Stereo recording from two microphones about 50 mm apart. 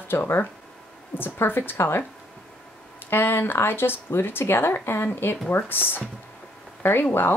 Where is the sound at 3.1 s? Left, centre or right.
Left.